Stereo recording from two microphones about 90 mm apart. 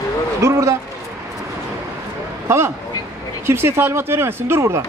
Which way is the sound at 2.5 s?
30° right (ahead or behind).